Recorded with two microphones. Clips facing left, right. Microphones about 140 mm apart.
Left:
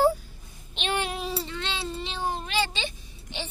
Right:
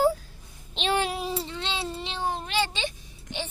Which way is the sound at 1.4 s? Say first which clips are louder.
Even; 20° right (ahead or behind).